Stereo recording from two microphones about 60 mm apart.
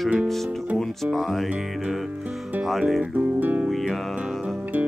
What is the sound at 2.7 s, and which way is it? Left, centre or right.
Speech, centre.